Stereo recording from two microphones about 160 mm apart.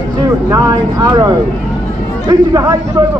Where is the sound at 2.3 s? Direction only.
25° right (ahead or behind).